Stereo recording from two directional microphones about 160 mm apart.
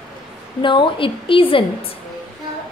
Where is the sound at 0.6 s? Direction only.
30° left (ahead or behind).